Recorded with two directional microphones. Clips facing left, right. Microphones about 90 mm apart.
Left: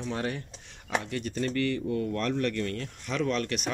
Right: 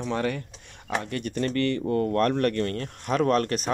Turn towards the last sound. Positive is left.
turn(degrees=-40)  # may be behind; listen again after turning